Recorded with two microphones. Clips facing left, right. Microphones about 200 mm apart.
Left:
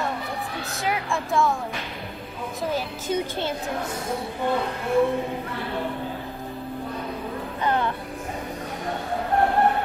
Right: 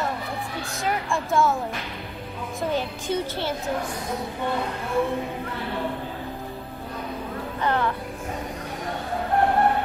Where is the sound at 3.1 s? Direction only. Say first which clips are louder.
Left 1 dB; 20° left (ahead or behind).